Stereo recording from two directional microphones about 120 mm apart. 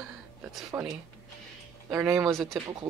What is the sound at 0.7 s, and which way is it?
Speech, 25° right (ahead or behind).